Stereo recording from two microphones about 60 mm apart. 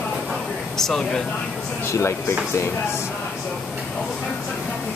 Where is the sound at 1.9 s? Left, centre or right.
Left.